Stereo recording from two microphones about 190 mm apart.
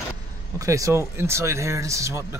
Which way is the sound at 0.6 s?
15° right (ahead or behind).